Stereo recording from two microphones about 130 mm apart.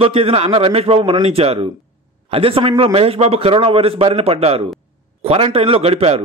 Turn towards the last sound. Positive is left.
turn(degrees=-50)  # may be behind; listen again after turning